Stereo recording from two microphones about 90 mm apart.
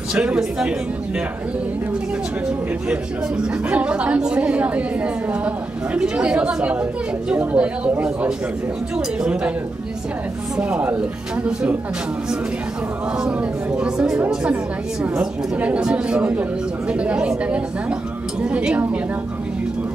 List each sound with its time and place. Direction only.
0.1 s a woman's voice: 10° right (ahead or behind)
2.9 s a woman's voice: 10° right (ahead or behind)
8.9 s a woman's voice: 10° right (ahead or behind)
10.6 s a woman's voice: 15° right (ahead or behind)
13.2 s a woman's voice: 10° right (ahead or behind)